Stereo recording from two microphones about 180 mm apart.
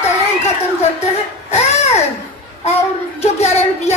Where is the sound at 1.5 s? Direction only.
35° left (ahead or behind).